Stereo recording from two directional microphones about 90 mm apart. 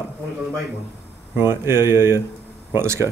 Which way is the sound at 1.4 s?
25° right (ahead or behind).